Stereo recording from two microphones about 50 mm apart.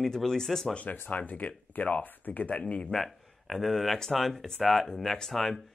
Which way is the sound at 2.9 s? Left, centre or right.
Centre.